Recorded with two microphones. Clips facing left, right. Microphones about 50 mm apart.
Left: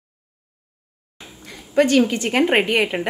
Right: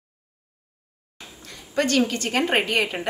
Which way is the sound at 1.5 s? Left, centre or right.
Centre.